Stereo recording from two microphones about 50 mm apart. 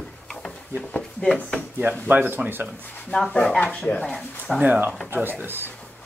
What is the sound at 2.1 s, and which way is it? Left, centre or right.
Speech, right.